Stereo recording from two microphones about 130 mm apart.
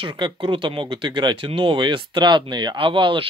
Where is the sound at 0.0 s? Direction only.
35° right (ahead or behind).